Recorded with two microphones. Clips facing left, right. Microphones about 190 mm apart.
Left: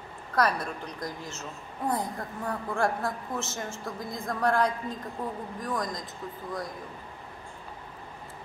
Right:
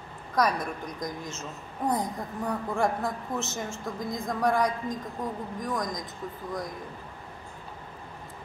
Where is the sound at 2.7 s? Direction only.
20° right (ahead or behind).